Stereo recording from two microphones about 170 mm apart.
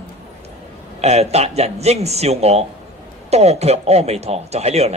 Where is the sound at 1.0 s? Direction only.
40° right (ahead or behind).